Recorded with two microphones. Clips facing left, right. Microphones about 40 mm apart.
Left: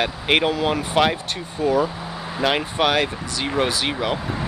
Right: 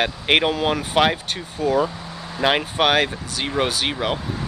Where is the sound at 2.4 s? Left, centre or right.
Centre.